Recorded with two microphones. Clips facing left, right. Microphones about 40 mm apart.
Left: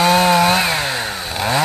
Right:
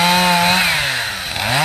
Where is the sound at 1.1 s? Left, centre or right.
Right.